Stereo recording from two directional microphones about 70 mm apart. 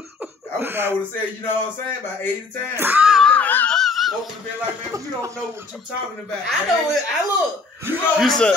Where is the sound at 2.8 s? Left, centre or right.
Right.